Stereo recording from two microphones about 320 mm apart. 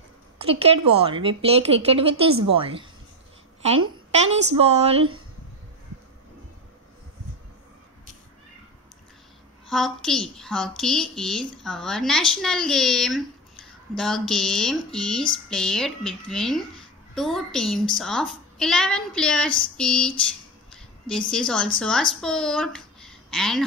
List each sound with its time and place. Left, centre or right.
0.5 s speech: centre
4.3 s a woman's voice: centre
9.7 s speech: centre
21.3 s speech: centre